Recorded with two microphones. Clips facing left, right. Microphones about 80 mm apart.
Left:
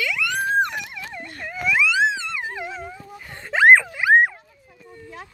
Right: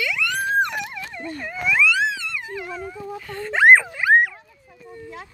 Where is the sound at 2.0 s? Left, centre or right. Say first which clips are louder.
Left 3 dB; left.